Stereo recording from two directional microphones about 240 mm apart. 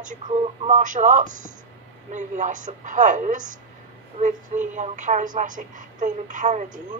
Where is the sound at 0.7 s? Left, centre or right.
Right.